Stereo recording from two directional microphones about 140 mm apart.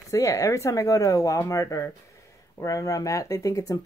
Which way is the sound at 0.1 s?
20° left (ahead or behind).